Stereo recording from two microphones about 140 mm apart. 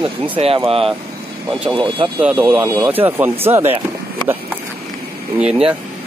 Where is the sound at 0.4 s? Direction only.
50° right (ahead or behind).